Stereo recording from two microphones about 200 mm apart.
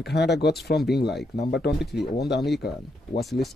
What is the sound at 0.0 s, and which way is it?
Speech, 55° left (ahead or behind).